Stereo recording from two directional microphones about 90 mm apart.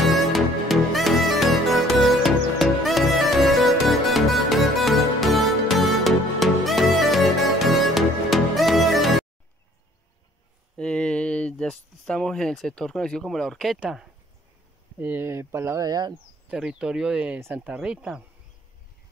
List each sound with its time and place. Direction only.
0.0 s music: centre (ahead or behind)
10.8 s speech: 10° left (ahead or behind); by 14.0 s 5° right (ahead or behind)
15.0 s speech: 20° right (ahead or behind)
15.8 s speech: 50° right (ahead or behind)
16.4 s speech: 10° right (ahead or behind)
17.4 s speech: 25° right (ahead or behind)
17.6 s speech: 5° right (ahead or behind)